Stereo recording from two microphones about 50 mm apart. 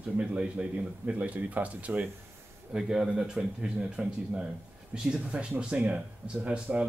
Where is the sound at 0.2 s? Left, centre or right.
Right.